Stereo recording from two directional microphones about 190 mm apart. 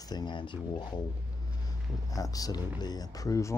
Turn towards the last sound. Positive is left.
turn(degrees=15)  # may be behind; listen again after turning